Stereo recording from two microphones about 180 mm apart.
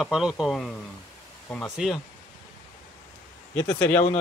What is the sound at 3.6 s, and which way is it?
Speech, 15° left (ahead or behind).